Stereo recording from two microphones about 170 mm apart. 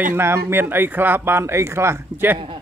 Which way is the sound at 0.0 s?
15° right (ahead or behind).